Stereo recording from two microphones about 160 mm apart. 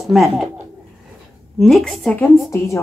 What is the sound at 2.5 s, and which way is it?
Speech, 15° left (ahead or behind).